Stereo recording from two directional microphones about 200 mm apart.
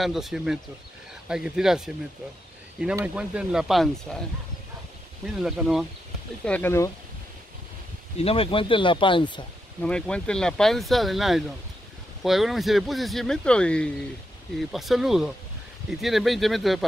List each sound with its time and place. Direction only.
0.0 s speech: centre (ahead or behind)
3.0 s speech: 5° right (ahead or behind)
5.2 s speech: centre (ahead or behind)
6.4 s speech: 10° left (ahead or behind)
8.2 s speech: 30° left (ahead or behind)
9.8 s speech: 5° left (ahead or behind)